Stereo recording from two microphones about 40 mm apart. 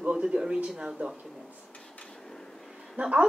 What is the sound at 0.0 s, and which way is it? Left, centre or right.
Speech, right.